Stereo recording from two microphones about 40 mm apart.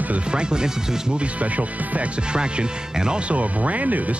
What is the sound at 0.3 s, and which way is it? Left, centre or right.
Speech, right.